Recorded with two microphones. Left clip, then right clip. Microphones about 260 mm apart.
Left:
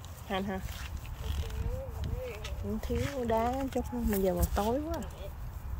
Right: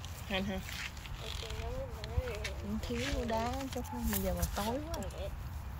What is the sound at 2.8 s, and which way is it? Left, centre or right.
Speech, left.